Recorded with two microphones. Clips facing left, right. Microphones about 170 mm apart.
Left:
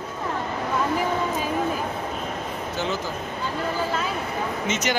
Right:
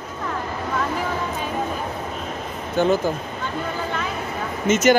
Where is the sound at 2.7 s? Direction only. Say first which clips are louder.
Right 10 dB; 50° right (ahead or behind).